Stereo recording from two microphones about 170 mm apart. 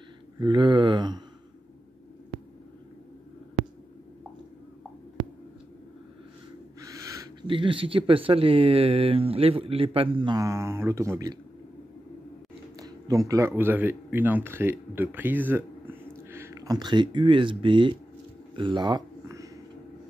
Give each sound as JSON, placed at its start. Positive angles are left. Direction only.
{"t": 0.4, "sound": "speech", "side_deg": -25}
{"t": 6.8, "sound": "owl", "side_deg": -20}
{"t": 7.4, "sound": "speech", "side_deg": -30}
{"t": 12.7, "sound": "speech", "side_deg": -20}
{"t": 18.6, "sound": "a sound", "side_deg": -25}